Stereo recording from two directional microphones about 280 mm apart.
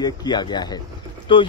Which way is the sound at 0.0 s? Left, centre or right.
Centre.